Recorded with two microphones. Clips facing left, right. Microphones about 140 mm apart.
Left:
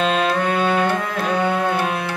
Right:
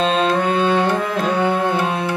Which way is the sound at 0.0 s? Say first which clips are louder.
Right 2 dB; 30° right (ahead or behind).